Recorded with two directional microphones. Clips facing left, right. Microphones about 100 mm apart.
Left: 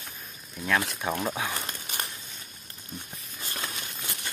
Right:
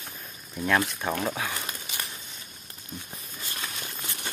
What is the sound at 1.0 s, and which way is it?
Speech, 10° left (ahead or behind).